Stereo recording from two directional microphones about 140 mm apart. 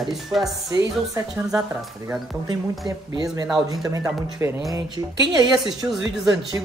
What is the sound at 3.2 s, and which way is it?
Speech, 25° right (ahead or behind).